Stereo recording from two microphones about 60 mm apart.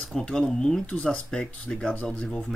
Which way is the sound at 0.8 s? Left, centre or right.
Centre.